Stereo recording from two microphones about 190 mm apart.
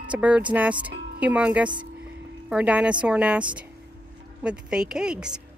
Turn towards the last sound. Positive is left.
turn(degrees=-5)  # may be behind; listen again after turning